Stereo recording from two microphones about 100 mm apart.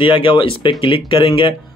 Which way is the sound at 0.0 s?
60° left (ahead or behind).